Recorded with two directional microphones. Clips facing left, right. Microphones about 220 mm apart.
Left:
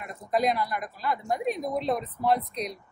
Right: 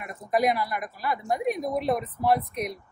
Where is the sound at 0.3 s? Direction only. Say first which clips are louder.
Right 1 dB; 5° right (ahead or behind).